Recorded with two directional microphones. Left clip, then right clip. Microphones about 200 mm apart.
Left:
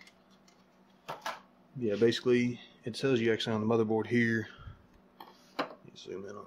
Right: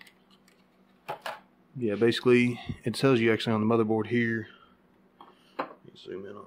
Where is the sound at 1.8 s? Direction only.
15° right (ahead or behind); by 4.6 s 5° left (ahead or behind).